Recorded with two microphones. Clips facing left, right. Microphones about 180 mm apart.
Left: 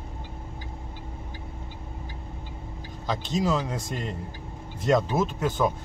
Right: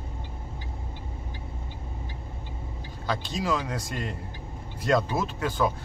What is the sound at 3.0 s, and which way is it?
Speech, 20° left (ahead or behind).